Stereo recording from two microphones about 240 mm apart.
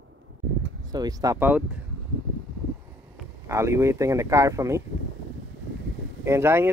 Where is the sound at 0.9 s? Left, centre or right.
Centre.